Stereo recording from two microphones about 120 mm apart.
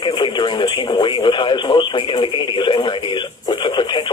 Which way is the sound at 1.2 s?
40° left (ahead or behind).